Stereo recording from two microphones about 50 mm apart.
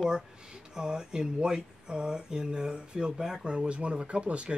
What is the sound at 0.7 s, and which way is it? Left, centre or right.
Speech, centre.